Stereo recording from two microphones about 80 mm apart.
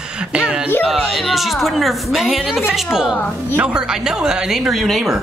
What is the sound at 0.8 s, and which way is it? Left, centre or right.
A woman's voice, centre.